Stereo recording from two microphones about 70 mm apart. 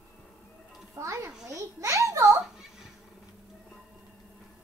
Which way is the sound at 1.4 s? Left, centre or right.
Right.